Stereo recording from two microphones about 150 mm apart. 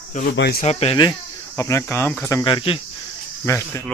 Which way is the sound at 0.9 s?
25° left (ahead or behind).